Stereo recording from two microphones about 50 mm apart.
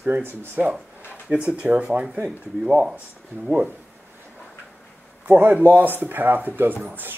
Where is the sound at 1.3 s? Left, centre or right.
Right.